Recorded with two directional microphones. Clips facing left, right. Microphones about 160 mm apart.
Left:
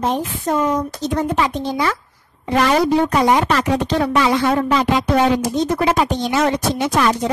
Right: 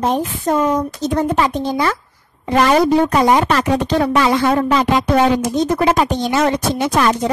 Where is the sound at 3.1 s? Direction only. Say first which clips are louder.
Right 2 dB; 45° right (ahead or behind).